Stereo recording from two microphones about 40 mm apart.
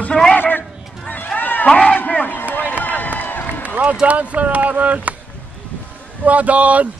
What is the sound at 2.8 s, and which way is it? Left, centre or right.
Run, left.